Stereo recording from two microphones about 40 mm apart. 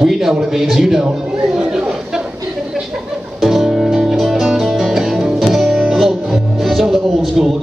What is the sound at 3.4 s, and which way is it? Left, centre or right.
Music, centre.